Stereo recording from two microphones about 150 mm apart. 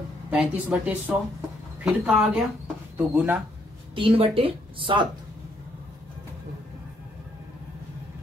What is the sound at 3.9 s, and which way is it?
Speech, 35° right (ahead or behind).